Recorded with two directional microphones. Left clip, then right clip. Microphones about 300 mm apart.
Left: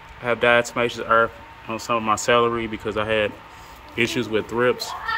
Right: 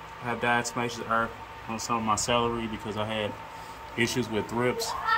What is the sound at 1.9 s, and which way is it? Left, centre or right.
A man's voice, centre.